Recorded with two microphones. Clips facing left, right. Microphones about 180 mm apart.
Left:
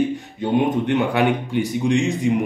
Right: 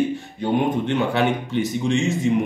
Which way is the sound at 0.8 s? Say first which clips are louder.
Left 2 dB; 15° left (ahead or behind).